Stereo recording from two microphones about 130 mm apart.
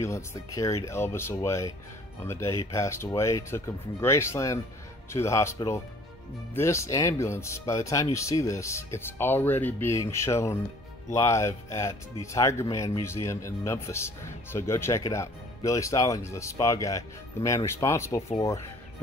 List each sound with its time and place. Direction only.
0.0 s speech: 20° left (ahead or behind)